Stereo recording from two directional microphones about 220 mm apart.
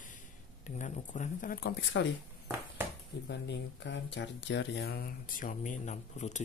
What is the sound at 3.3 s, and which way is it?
Speech, 50° left (ahead or behind).